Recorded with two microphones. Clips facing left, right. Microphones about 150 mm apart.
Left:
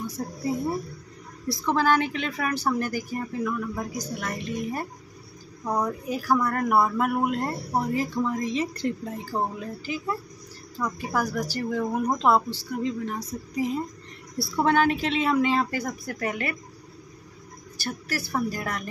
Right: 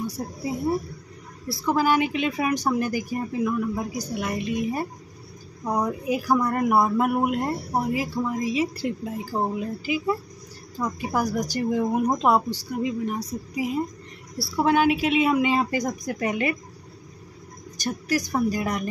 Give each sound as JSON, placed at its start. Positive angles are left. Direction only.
{"t": 0.2, "sound": "speech", "side_deg": -15}
{"t": 1.5, "sound": "speech", "side_deg": -5}
{"t": 17.7, "sound": "speech", "side_deg": -15}